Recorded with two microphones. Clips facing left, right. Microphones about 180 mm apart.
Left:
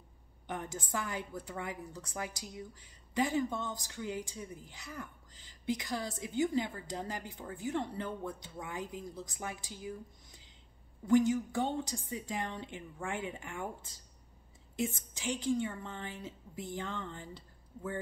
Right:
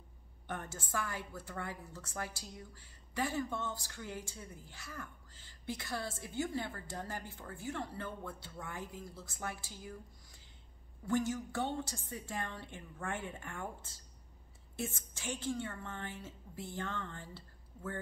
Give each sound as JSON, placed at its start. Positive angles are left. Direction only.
{"t": 0.5, "sound": "a woman's voice", "side_deg": 15}
{"t": 11.1, "sound": "a woman's voice", "side_deg": 15}